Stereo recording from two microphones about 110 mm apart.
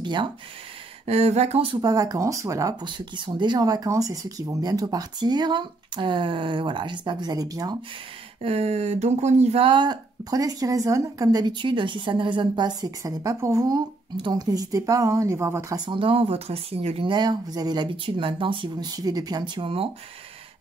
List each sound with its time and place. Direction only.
0.0 s speech: 45° right (ahead or behind)
1.0 s speech: 70° right (ahead or behind)
1.8 s speech: 35° right (ahead or behind)
2.8 s speech: 45° right (ahead or behind)
8.4 s speech: 65° right (ahead or behind)
9.7 s speech: 40° right (ahead or behind)
14.1 s speech: 40° right (ahead or behind); by 15.8 s 25° right (ahead or behind)
15.8 s speech: 50° right (ahead or behind)
17.1 s speech: 40° right (ahead or behind)
18.9 s speech: 35° right (ahead or behind)